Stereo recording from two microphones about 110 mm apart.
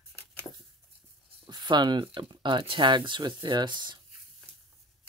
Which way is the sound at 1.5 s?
40° right (ahead or behind).